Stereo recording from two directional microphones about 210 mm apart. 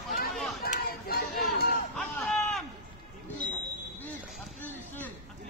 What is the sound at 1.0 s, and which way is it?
Crowd, 45° left (ahead or behind).